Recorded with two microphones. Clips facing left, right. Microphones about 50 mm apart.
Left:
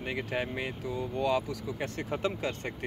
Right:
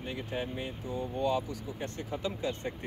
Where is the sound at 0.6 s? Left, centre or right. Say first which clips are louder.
Left 2 dB; left.